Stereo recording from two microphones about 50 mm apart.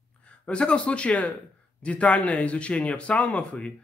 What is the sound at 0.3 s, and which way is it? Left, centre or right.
Speech, left.